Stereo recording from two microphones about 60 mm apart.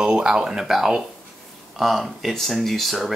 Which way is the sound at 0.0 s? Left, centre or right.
Centre.